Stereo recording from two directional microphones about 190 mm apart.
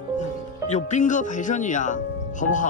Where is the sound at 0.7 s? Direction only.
40° left (ahead or behind).